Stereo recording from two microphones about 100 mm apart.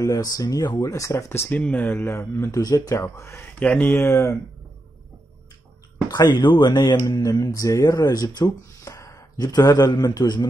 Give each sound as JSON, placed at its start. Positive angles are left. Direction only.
{"t": 0.0, "sound": "speech", "side_deg": 35}
{"t": 3.5, "sound": "speech", "side_deg": 15}
{"t": 6.0, "sound": "speech", "side_deg": 40}
{"t": 6.3, "sound": "speech", "side_deg": 50}
{"t": 7.1, "sound": "speech", "side_deg": 35}